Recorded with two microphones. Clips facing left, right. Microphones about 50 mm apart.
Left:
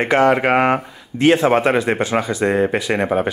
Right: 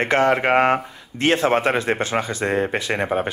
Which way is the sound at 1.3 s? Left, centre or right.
Left.